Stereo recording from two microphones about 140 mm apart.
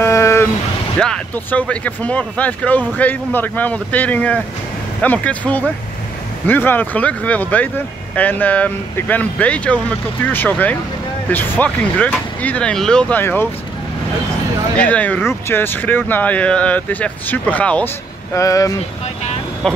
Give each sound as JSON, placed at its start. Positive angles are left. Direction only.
{"t": 0.0, "sound": "vehicle", "side_deg": 20}
{"t": 0.9, "sound": "speech", "side_deg": 5}
{"t": 13.2, "sound": "speech", "side_deg": 15}
{"t": 14.8, "sound": "speech", "side_deg": 10}
{"t": 18.3, "sound": "speech", "side_deg": 25}
{"t": 19.6, "sound": "speech", "side_deg": 5}